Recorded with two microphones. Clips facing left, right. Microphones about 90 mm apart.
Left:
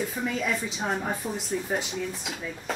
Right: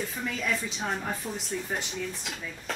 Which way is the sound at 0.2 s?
5° left (ahead or behind).